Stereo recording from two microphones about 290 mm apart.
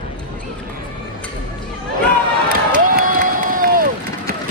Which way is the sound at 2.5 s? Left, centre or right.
Right.